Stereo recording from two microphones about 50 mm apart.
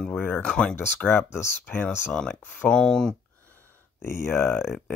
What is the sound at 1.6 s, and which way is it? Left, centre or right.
Speech, left.